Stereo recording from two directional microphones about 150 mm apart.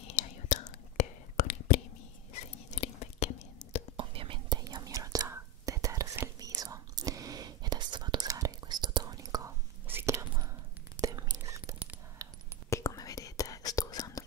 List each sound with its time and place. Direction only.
0.1 s whispering: 50° left (ahead or behind)
3.9 s whispering: 35° right (ahead or behind); by 10.2 s 15° right (ahead or behind)
11.0 s a sound: 25° right (ahead or behind)
12.6 s whispering: 20° left (ahead or behind)